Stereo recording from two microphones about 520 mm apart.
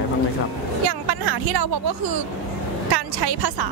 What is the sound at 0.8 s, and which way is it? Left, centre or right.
Speech, right.